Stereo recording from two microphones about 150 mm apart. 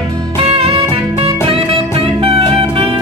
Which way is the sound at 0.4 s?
40° right (ahead or behind).